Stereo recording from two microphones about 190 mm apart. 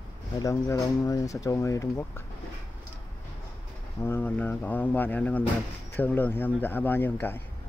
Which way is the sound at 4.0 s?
10° left (ahead or behind).